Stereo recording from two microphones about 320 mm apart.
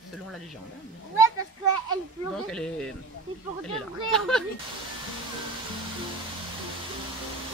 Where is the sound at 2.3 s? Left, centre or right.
Centre.